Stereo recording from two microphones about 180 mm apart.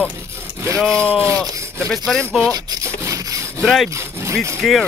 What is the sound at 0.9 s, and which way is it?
Speech, 10° right (ahead or behind).